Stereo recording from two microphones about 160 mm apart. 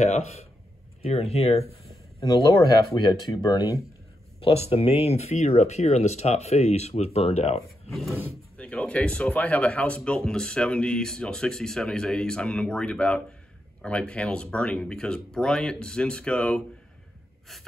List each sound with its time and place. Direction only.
0.0 s speech: 45° left (ahead or behind)
2.1 s speech: 20° left (ahead or behind)
4.4 s speech: 35° left (ahead or behind)
8.5 s speech: 5° left (ahead or behind)